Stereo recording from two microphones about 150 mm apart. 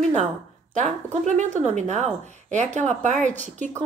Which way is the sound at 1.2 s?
55° right (ahead or behind).